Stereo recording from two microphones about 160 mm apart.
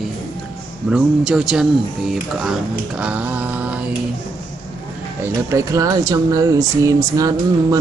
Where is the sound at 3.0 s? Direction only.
10° right (ahead or behind).